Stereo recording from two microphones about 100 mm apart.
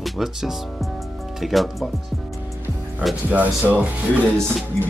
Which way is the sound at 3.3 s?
15° right (ahead or behind).